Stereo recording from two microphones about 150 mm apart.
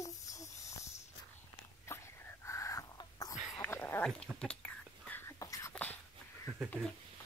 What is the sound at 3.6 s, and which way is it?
Whispering, 15° left (ahead or behind).